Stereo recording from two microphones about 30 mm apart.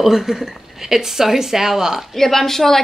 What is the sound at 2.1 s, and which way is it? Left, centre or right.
Speech, centre.